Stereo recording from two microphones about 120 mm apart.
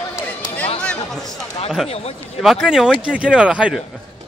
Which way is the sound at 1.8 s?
55° left (ahead or behind).